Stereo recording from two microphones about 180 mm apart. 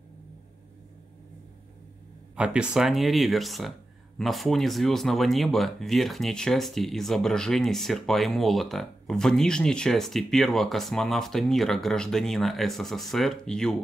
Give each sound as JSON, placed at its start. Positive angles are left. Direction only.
{"t": 2.3, "sound": "speech", "side_deg": -5}